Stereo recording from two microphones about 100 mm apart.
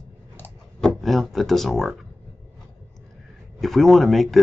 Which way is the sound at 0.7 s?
5° left (ahead or behind).